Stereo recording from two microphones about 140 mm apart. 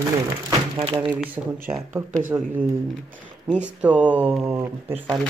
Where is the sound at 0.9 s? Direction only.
10° right (ahead or behind).